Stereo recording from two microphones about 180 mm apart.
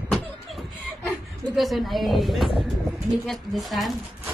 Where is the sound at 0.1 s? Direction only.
Centre (ahead or behind).